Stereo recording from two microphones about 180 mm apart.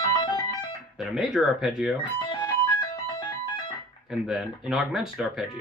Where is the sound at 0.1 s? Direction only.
25° left (ahead or behind).